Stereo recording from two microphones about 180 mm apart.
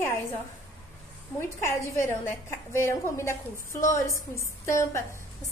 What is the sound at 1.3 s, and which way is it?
A woman's voice, 15° left (ahead or behind).